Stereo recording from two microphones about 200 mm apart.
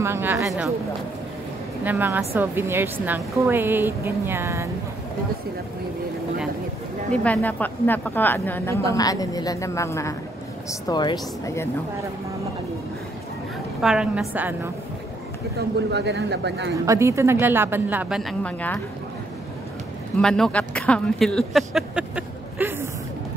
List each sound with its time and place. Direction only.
0.0 s a woman's voice: 10° right (ahead or behind)
1.9 s a woman's voice: 10° right (ahead or behind)
7.1 s a woman's voice: 5° left (ahead or behind)
13.7 s a woman's voice: 5° right (ahead or behind)
15.9 s speech: 55° right (ahead or behind)
16.7 s a woman's voice: 15° right (ahead or behind); by 18.8 s 5° left (ahead or behind)
20.2 s speech: 5° left (ahead or behind)